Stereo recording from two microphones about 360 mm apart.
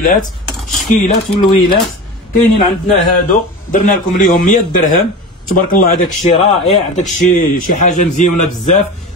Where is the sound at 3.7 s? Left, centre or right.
Left.